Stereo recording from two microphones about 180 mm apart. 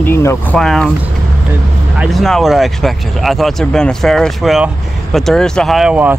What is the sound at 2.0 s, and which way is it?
Speech, centre (ahead or behind).